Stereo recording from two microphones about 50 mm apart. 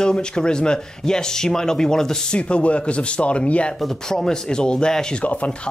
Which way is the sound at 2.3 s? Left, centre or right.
Left.